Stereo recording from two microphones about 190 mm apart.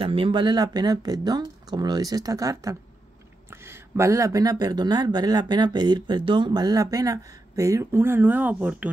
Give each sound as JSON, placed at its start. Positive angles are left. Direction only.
{"t": 0.0, "sound": "speech", "side_deg": -30}